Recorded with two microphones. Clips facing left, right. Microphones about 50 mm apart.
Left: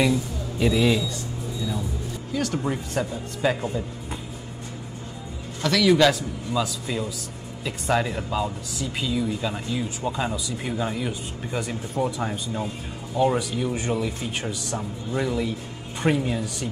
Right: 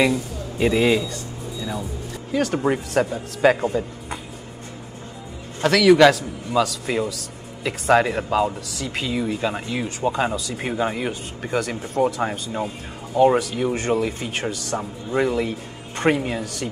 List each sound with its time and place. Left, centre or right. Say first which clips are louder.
0.0 s speech: right 2 dB; right
5.6 s speech: right 5 dB; right
6.6 s a man's voice: right 6 dB; right
7.6 s speech: right 6 dB; right
8.7 s speech: right 1 dB; right
12.2 s speech: right 3 dB; right
13.1 s a man's voice: right 5 dB; right
15.1 s speech: right 5 dB; right